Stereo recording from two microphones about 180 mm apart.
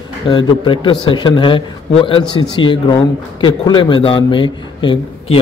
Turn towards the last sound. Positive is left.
turn(degrees=30)  # may be behind; listen again after turning